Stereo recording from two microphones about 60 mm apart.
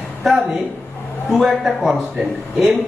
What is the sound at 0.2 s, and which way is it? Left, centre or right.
A man's voice, centre.